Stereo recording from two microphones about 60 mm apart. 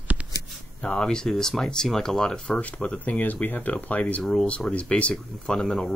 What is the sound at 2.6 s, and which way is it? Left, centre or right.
Speech, left.